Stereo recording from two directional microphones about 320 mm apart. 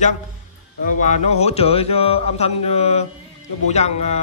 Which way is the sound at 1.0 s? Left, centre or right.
Centre.